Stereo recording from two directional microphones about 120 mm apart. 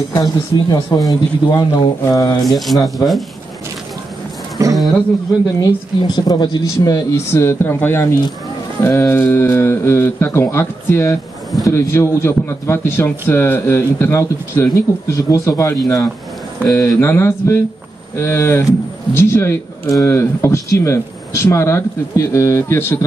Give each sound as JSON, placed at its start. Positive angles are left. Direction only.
{"t": 0.1, "sound": "speech", "side_deg": 30}
{"t": 2.4, "sound": "speech", "side_deg": 0}
{"t": 4.6, "sound": "a sound", "side_deg": -30}
{"t": 5.6, "sound": "speech", "side_deg": 35}